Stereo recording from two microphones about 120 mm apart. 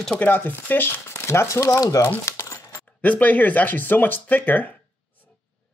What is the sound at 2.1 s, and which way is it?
Crumpling, 20° left (ahead or behind).